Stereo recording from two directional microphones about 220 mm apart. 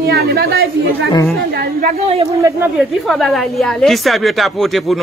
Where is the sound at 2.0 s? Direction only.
30° right (ahead or behind).